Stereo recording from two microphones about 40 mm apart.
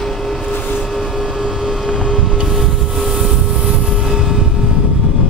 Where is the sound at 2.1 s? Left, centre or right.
Centre.